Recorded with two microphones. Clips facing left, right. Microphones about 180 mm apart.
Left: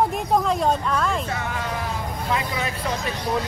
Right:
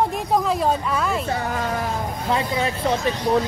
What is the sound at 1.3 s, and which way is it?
Speech, 35° right (ahead or behind).